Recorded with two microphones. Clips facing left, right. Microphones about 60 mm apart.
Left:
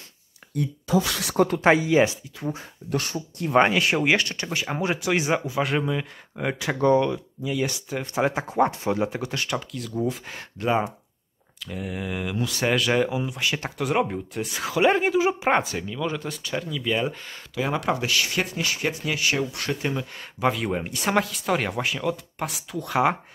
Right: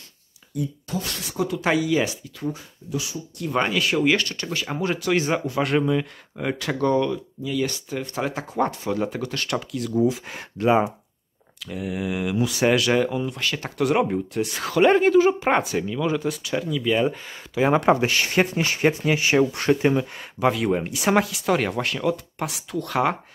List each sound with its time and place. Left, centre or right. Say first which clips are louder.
1.3 s speech: left 5 dB; left
1.6 s speech: left 2 dB; left
2.9 s speech: left 2 dB; left
3.3 s speech: left 4 dB; left
5.5 s speech: right 3 dB; centre
6.8 s speech: left 2 dB; left
9.5 s speech: right 4 dB; centre
12.7 s speech: right 2 dB; centre
17.6 s speech: right 7 dB; right
20.3 s speech: right 3 dB; centre